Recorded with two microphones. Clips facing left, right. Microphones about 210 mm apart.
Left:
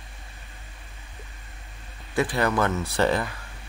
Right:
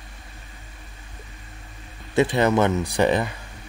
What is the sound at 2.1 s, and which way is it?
Speech, 25° right (ahead or behind).